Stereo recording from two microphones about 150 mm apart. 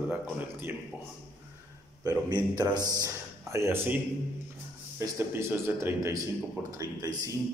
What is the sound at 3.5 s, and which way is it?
Speech, 15° right (ahead or behind).